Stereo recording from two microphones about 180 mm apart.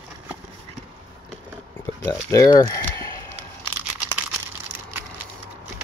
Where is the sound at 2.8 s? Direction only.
15° left (ahead or behind).